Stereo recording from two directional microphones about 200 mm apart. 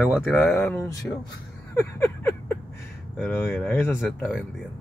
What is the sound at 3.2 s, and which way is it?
Speech, 5° left (ahead or behind).